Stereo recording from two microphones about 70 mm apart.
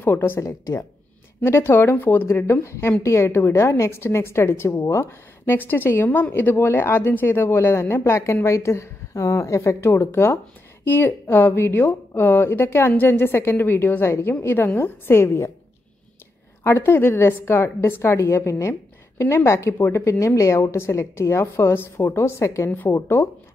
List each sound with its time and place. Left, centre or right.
0.0 s a woman's voice: left
0.4 s a woman's voice: left
1.4 s a woman's voice: left
9.8 s a woman's voice: left
16.6 s a woman's voice: left
20.2 s a woman's voice: left